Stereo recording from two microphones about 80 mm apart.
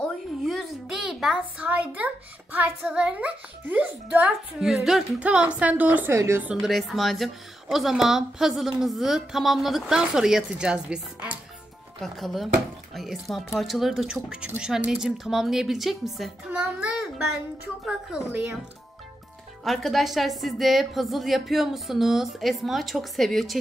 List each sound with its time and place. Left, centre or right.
0.5 s a sound: centre
1.6 s a sound: centre
2.8 s a child's voice: centre
4.6 s speech: centre
5.2 s a child's voice: centre
6.1 s a woman's voice: right
6.6 s speech: centre
12.0 s speech: centre
16.4 s a child's voice: centre
17.0 s a child's voice: centre
18.3 s a child's voice: right
19.6 s speech: centre